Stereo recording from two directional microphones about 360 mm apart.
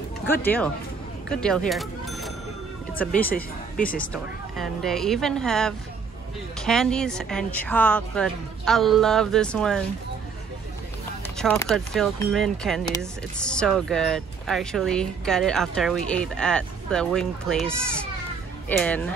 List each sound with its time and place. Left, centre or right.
0.4 s speech: centre
3.7 s speech: left
4.0 s speech: centre
11.3 s speech: centre